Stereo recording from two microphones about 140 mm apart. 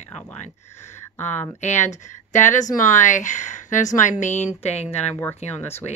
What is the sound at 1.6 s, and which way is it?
A woman's voice, 60° left (ahead or behind).